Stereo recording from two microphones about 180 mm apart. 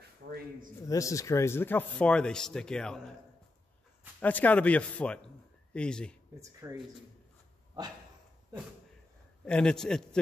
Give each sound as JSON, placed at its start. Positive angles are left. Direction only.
{"t": 0.8, "sound": "speech", "side_deg": 20}
{"t": 4.2, "sound": "speech", "side_deg": 10}
{"t": 6.6, "sound": "speech", "side_deg": -15}
{"t": 9.4, "sound": "a man's voice", "side_deg": 5}